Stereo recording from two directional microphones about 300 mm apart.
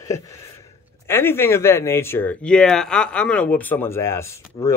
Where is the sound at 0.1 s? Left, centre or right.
Centre.